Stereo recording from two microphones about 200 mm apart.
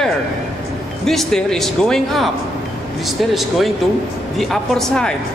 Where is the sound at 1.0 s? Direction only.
Centre (ahead or behind).